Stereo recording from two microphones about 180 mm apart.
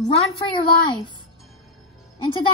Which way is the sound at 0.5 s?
25° left (ahead or behind).